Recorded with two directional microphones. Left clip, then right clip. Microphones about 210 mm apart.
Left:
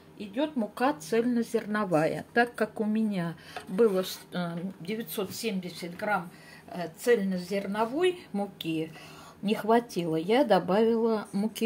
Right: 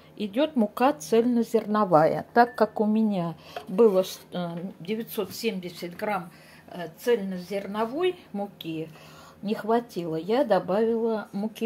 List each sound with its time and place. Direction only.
0.2 s speech: 45° right (ahead or behind)
1.0 s speech: 20° right (ahead or behind)
1.7 s speech: 10° left (ahead or behind)
2.9 s speech: 10° right (ahead or behind)
6.7 s speech: centre (ahead or behind)